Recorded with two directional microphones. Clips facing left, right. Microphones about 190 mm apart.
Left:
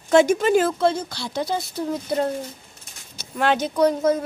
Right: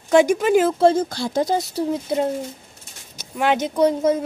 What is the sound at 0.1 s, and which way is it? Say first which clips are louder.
Speech: right 1 dB; 15° right (ahead or behind).